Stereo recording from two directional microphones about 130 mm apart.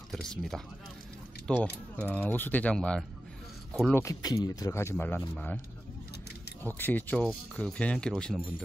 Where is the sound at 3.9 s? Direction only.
25° left (ahead or behind).